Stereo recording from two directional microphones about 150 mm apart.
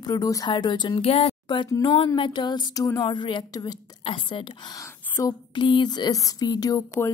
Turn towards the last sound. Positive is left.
turn(degrees=20)  # may be behind; listen again after turning